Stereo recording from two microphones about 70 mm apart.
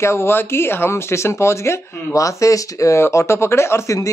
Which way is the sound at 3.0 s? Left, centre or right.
Left.